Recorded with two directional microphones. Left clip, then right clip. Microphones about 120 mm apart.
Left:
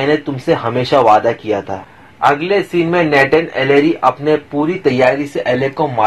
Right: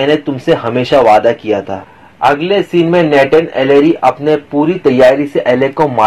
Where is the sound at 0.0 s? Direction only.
20° right (ahead or behind).